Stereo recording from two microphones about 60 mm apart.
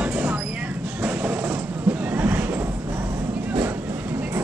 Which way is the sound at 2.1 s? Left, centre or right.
Right.